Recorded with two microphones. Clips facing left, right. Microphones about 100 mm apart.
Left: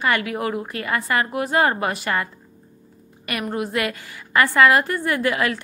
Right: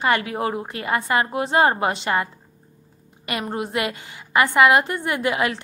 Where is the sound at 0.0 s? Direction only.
30° right (ahead or behind).